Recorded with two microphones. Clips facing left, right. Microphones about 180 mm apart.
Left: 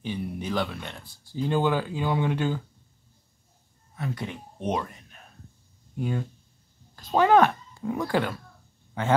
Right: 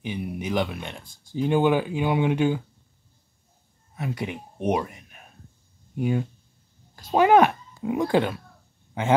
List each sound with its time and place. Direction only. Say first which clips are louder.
0.0 s speech: right 1 dB; 15° right (ahead or behind)
3.9 s speech: right 3 dB; 15° right (ahead or behind)